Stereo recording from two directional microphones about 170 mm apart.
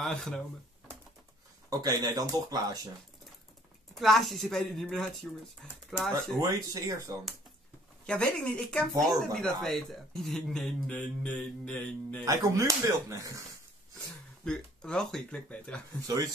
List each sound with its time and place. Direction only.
0.0 s speech: 5° left (ahead or behind)
1.7 s speech: 20° right (ahead or behind)
3.9 s speech: centre (ahead or behind)
6.4 s speech: 20° right (ahead or behind)
8.1 s speech: 5° left (ahead or behind)
12.3 s speech: 20° right (ahead or behind)
14.4 s speech: 5° left (ahead or behind)